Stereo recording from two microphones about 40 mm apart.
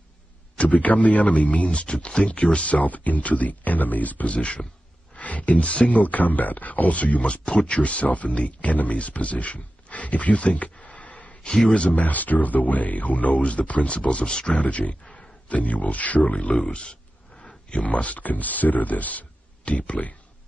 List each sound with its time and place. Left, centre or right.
0.6 s speech: left
4.3 s speech: left
7.4 s speech: left
11.4 s speech: centre
11.9 s speech: left
14.5 s speech: left
16.5 s a sound: left
17.6 s speech: left